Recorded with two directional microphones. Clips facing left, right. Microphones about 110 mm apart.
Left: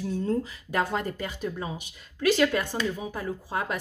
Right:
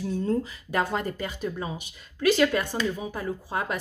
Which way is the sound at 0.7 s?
20° right (ahead or behind).